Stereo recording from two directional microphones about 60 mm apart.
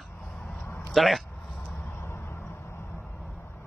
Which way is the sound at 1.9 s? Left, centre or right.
Left.